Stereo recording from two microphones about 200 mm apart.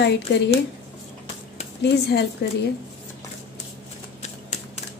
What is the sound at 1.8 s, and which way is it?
Speech, 55° left (ahead or behind).